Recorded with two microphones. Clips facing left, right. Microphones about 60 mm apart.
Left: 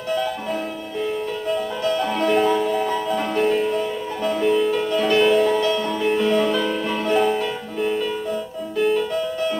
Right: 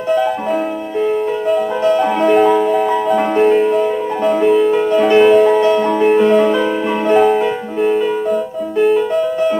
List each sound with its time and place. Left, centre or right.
2.2 s music: centre
4.7 s music: right
5.2 s music: centre
5.6 s music: right
6.3 s music: centre